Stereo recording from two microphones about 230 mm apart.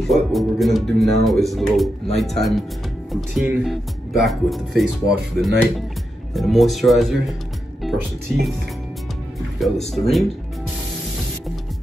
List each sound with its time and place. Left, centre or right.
0.0 s speech: centre
7.8 s music: centre
9.6 s speech: centre